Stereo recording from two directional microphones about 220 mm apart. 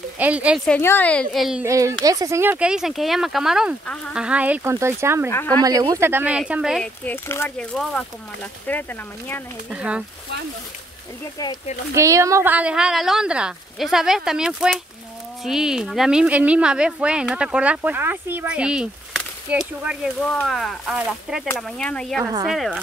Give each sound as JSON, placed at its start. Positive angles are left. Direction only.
{"t": 0.2, "sound": "speech", "side_deg": -5}
{"t": 0.7, "sound": "speech", "side_deg": 10}
{"t": 1.7, "sound": "speech", "side_deg": -15}
{"t": 5.3, "sound": "speech", "side_deg": 10}
{"t": 5.6, "sound": "speech", "side_deg": -15}
{"t": 9.7, "sound": "speech", "side_deg": -5}
{"t": 11.9, "sound": "speech", "side_deg": -15}
{"t": 22.2, "sound": "speech", "side_deg": -15}
{"t": 22.5, "sound": "speech", "side_deg": 0}